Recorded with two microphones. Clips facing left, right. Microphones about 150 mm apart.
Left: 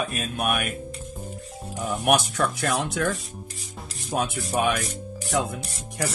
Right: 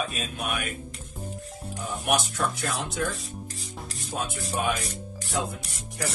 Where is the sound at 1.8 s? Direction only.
65° left (ahead or behind).